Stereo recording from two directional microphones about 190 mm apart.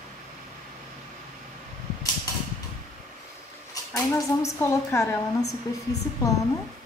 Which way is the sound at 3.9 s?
15° left (ahead or behind).